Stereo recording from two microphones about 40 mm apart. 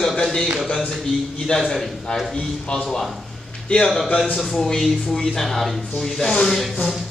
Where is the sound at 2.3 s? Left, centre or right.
Left.